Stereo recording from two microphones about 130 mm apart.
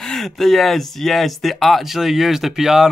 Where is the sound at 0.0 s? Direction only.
5° left (ahead or behind).